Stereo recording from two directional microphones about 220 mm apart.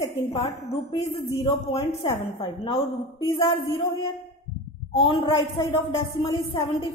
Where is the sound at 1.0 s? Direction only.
25° left (ahead or behind).